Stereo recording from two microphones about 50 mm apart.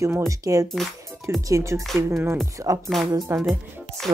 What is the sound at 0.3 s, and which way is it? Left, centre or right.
Speech, right.